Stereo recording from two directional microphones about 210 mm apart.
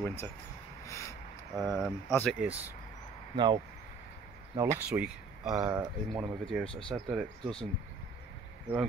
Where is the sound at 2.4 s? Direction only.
5° right (ahead or behind).